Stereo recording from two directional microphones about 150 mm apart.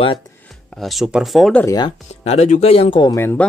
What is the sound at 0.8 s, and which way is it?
Speech, centre (ahead or behind).